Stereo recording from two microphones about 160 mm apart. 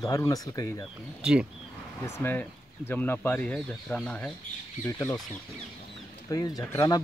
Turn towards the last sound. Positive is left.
turn(degrees=20)  # may be behind; listen again after turning